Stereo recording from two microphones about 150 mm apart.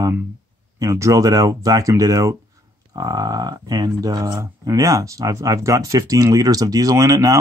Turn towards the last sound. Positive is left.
turn(degrees=-20)  # may be behind; listen again after turning